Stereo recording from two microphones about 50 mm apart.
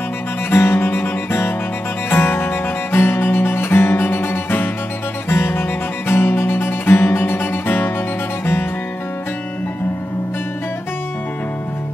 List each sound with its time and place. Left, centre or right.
0.5 s music: left